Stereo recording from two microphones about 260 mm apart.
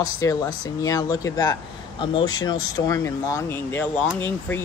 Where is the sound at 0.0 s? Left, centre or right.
Centre.